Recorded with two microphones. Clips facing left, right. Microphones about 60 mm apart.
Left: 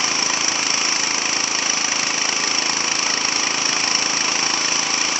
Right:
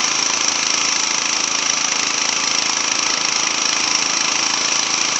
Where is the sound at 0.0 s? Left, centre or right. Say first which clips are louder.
Right 1 dB; right.